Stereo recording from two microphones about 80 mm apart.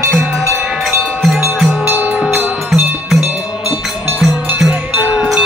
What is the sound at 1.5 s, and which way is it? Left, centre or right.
Wind chime, centre.